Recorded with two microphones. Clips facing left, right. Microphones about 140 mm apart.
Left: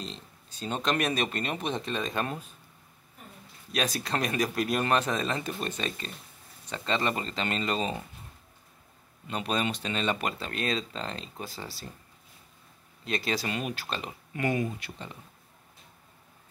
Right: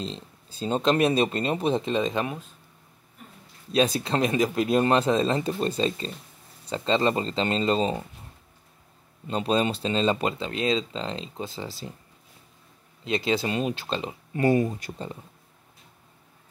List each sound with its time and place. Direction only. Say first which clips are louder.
0.0 s speech: right 6 dB; 30° right (ahead or behind)
3.7 s speech: right 7 dB; 25° right (ahead or behind)
9.3 s speech: right 6 dB; 30° right (ahead or behind)
13.0 s speech: right 6 dB; 20° right (ahead or behind); by 15.1 s 40° right (ahead or behind)